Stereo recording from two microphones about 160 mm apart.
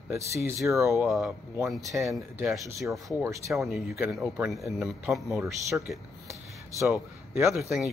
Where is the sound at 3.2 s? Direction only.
20° right (ahead or behind).